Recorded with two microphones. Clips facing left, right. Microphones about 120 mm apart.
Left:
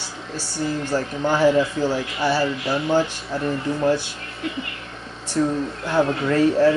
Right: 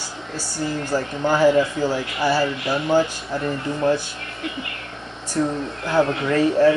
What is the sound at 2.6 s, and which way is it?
Speech, centre (ahead or behind).